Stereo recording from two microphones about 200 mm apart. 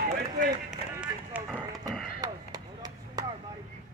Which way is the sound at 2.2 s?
20° right (ahead or behind).